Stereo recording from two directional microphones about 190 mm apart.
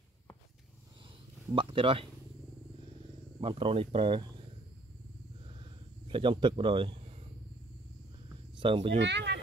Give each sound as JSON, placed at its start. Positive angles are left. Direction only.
{"t": 1.5, "sound": "speech", "side_deg": -25}
{"t": 3.3, "sound": "speech", "side_deg": -30}
{"t": 5.4, "sound": "a sound", "side_deg": -25}
{"t": 8.5, "sound": "speech", "side_deg": -30}
{"t": 8.9, "sound": "speech", "side_deg": -65}